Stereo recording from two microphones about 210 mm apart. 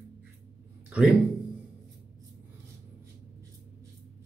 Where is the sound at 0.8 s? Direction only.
5° right (ahead or behind).